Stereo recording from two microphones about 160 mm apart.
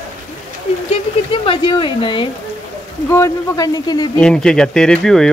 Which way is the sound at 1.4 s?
30° left (ahead or behind).